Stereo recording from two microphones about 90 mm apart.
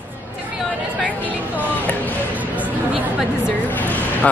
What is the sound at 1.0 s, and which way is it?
Music, 20° left (ahead or behind).